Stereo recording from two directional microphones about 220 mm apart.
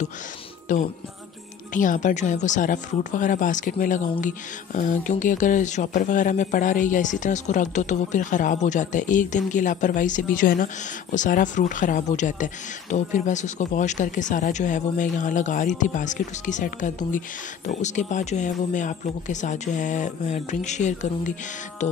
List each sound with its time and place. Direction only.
0.7 s speech: 35° left (ahead or behind)